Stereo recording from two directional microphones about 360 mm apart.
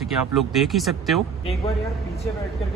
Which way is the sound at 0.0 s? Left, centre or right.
Centre.